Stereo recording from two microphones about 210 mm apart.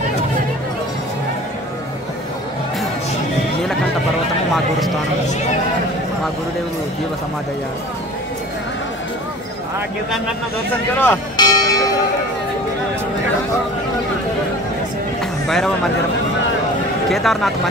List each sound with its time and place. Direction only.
11.0 s church bell: 15° left (ahead or behind)
15.4 s speech: centre (ahead or behind)
17.1 s speech: centre (ahead or behind)